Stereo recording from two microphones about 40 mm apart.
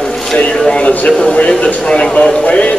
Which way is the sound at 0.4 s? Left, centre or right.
Left.